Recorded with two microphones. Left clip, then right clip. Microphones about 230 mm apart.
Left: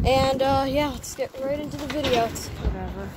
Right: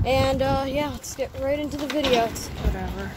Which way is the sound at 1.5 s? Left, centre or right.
Right.